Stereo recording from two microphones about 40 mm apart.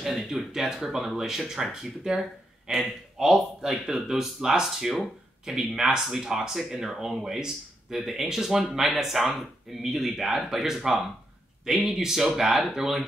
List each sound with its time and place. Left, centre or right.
0.0 s speech: centre